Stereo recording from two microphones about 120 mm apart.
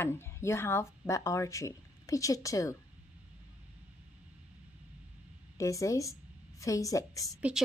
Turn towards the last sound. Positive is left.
turn(degrees=30)  # may be behind; listen again after turning